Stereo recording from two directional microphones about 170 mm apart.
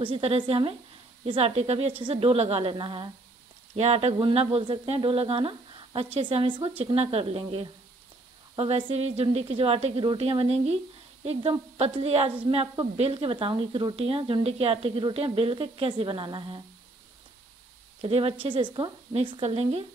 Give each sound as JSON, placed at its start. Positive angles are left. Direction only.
{"t": 0.0, "sound": "a woman's voice", "side_deg": -35}
{"t": 18.0, "sound": "a woman's voice", "side_deg": -35}